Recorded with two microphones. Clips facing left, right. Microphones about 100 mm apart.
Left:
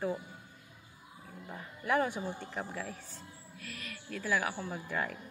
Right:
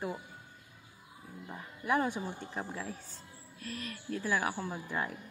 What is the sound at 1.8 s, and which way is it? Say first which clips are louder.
Speech: even; 25° right (ahead or behind).